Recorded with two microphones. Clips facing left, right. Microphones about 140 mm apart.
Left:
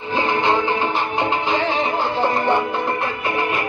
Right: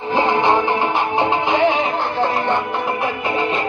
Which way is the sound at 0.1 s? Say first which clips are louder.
Right 3 dB; 25° right (ahead or behind).